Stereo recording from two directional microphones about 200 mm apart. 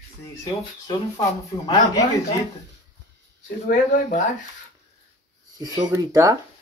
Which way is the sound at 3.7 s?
40° left (ahead or behind).